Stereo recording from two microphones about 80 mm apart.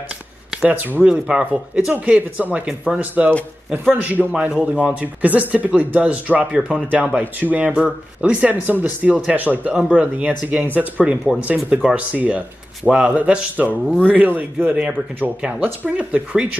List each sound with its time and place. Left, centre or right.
0.6 s speech: right